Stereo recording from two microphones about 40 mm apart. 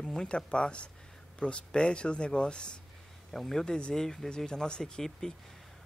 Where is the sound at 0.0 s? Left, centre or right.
Centre.